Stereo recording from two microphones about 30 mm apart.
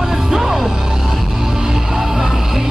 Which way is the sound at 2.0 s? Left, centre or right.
Centre.